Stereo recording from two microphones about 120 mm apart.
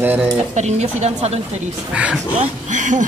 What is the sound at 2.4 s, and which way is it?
Speech, 90° right.